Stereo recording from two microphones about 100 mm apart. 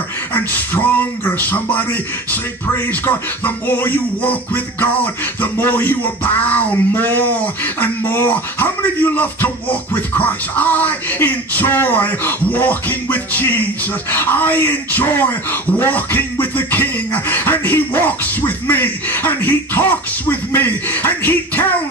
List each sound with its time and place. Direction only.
0.3 s music: 20° left (ahead or behind)
3.1 s music: 20° left (ahead or behind)